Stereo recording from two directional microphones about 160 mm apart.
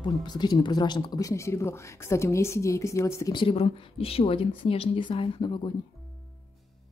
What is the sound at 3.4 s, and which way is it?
A woman's voice, 35° left (ahead or behind).